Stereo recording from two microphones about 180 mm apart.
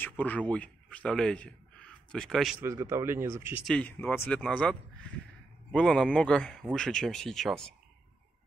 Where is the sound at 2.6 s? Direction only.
15° right (ahead or behind).